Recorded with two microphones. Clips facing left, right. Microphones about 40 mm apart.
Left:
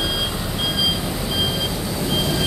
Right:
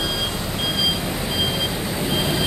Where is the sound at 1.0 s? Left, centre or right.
Right.